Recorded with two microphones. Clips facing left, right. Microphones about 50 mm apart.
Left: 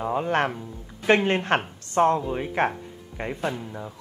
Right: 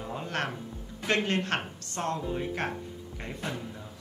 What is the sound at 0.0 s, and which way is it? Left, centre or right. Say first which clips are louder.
Music: left 11 dB; left.